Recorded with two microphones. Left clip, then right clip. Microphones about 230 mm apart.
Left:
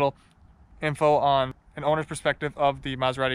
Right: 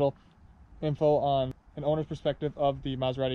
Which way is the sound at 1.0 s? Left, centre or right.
Left.